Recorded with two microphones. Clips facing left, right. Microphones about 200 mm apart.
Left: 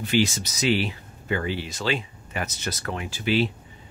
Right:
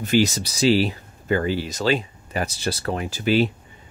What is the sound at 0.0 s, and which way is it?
Speech, 40° right (ahead or behind).